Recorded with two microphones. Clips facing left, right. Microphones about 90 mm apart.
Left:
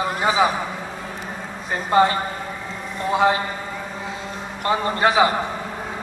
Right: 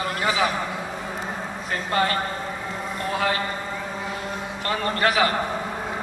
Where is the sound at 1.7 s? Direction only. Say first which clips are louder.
Left 6 dB; 20° left (ahead or behind).